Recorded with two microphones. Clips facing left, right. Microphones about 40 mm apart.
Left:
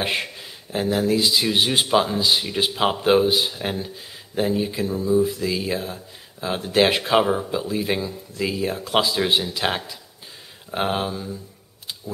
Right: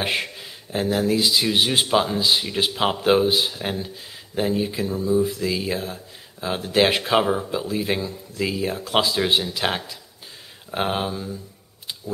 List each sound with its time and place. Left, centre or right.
0.0 s speech: centre